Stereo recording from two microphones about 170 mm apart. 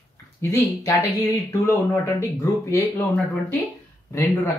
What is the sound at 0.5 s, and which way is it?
Speech, 20° left (ahead or behind).